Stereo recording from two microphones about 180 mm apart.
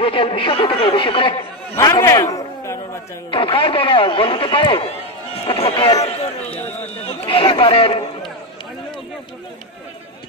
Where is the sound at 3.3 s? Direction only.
30° left (ahead or behind).